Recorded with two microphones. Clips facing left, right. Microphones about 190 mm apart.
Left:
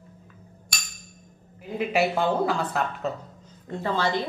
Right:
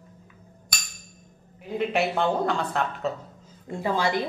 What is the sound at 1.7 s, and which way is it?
A woman's voice, 5° left (ahead or behind).